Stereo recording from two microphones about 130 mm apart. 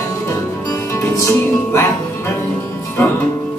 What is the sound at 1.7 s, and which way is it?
Speech, 15° left (ahead or behind).